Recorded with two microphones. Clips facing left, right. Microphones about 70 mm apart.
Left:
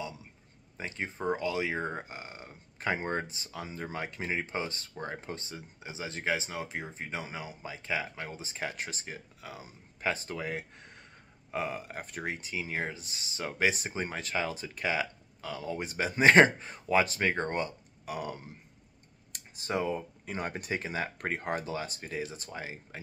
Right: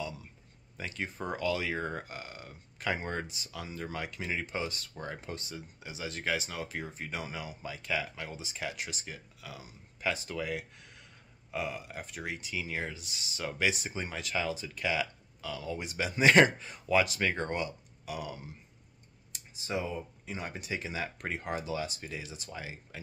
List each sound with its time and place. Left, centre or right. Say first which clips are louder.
0.7 s speech: left 1 dB; left